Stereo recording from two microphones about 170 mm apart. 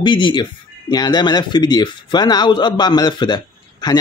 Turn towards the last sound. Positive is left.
turn(degrees=25)  # may be behind; listen again after turning